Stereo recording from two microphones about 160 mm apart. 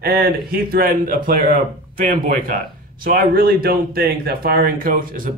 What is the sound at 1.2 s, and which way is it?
Speech, 60° right (ahead or behind).